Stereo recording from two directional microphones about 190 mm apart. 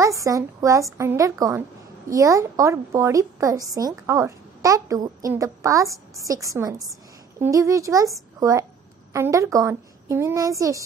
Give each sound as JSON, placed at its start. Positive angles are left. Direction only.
{"t": 0.0, "sound": "a woman's voice", "side_deg": -15}